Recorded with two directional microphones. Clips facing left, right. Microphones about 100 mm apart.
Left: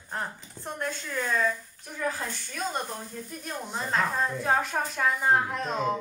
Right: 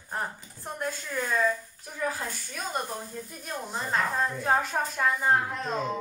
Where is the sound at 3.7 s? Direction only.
5° right (ahead or behind).